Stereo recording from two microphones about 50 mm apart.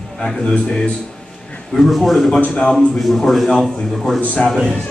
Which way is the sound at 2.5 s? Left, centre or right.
Centre.